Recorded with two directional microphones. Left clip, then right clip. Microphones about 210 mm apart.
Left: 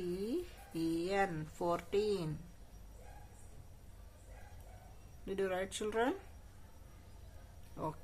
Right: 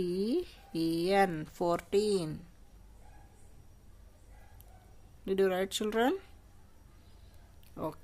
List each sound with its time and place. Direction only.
0.1 s speech: 40° right (ahead or behind)
5.2 s speech: 45° right (ahead or behind)
7.8 s speech: 35° right (ahead or behind)